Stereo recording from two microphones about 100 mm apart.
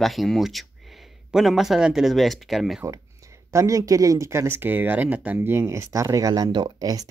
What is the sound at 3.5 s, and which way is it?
Speech, 35° right (ahead or behind).